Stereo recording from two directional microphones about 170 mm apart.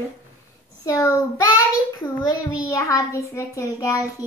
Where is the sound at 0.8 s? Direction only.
20° left (ahead or behind).